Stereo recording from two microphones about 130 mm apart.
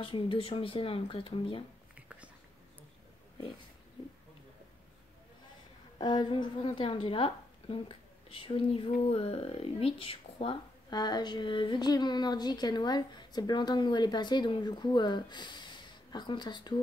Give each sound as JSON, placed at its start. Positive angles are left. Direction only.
{"t": 0.0, "sound": "speech", "side_deg": 45}
{"t": 2.0, "sound": "a sound", "side_deg": -10}
{"t": 5.9, "sound": "speech", "side_deg": 40}